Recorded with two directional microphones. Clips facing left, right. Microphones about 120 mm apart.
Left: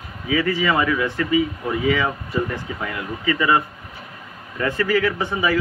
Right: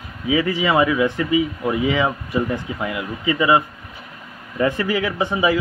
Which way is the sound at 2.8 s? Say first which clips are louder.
Right 2 dB; 15° right (ahead or behind).